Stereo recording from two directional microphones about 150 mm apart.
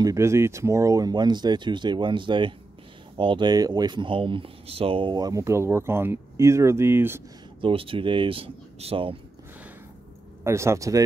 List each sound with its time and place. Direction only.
0.0 s speech: 20° right (ahead or behind)
7.6 s speech: 35° right (ahead or behind)
10.4 s speech: 20° right (ahead or behind)